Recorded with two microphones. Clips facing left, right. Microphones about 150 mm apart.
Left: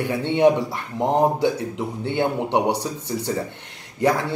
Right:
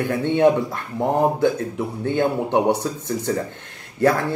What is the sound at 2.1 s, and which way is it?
Speech, 15° left (ahead or behind).